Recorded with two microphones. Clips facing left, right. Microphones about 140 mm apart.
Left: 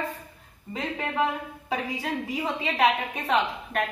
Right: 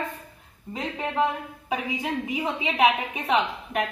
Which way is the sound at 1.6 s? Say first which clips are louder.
Right 2 dB; 10° right (ahead or behind).